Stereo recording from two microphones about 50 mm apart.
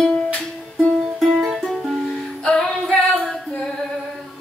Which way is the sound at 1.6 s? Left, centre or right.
Centre.